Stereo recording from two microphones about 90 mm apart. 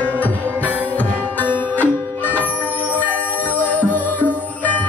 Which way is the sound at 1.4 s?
20° left (ahead or behind).